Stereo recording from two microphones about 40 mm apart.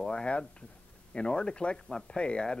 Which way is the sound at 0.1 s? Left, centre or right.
Left.